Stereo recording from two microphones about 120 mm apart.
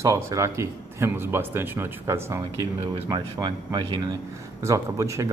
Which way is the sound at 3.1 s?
35° right (ahead or behind).